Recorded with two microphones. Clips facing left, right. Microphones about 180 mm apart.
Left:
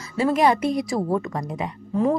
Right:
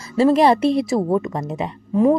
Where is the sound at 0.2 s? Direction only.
30° right (ahead or behind).